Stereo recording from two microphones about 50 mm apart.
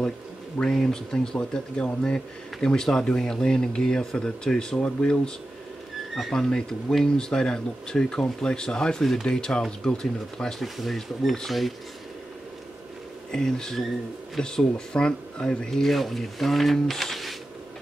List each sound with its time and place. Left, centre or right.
0.6 s speech: centre
10.6 s speech: centre
13.3 s speech: centre